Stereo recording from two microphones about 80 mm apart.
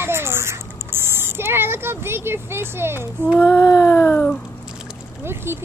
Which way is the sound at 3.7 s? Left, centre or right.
Left.